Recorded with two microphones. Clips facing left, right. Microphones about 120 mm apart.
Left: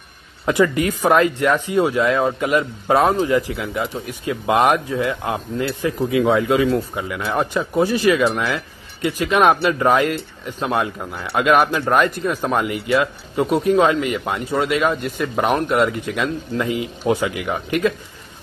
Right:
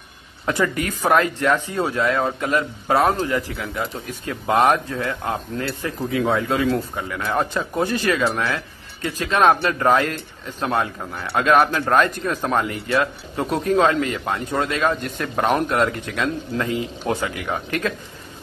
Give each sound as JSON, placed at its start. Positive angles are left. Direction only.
{"t": 0.5, "sound": "speech", "side_deg": 15}